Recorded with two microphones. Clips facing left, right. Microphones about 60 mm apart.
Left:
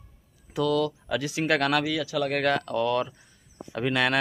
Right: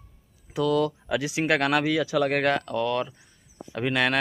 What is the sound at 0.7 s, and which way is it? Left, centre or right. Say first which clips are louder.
Speech: right 2 dB; centre.